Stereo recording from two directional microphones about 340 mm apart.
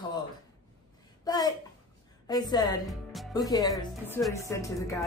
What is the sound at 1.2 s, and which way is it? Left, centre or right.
Speech, centre.